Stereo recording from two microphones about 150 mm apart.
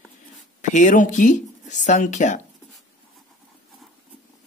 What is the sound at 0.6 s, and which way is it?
Speech, 55° left (ahead or behind).